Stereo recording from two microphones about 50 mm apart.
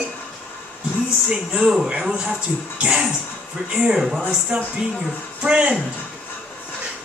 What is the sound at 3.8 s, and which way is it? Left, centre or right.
A woman's voice, centre.